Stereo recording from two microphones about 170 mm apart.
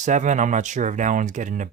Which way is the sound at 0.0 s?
45° right (ahead or behind).